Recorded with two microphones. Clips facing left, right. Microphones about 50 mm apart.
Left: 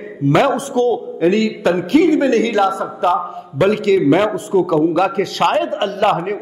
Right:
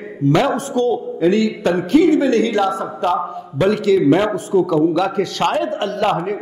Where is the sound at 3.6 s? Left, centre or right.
Left.